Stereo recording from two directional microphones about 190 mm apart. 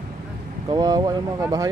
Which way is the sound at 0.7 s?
20° right (ahead or behind).